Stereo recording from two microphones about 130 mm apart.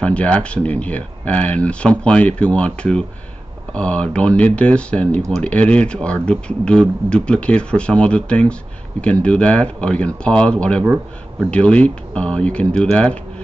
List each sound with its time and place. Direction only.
0.0 s speech: 10° left (ahead or behind)